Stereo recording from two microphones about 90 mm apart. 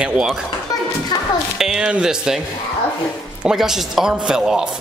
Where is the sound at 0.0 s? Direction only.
10° right (ahead or behind).